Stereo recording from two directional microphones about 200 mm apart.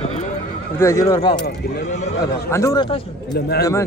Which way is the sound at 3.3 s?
50° left (ahead or behind).